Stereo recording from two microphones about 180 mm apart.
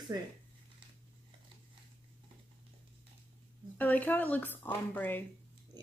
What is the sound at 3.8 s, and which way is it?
Speech, 10° left (ahead or behind).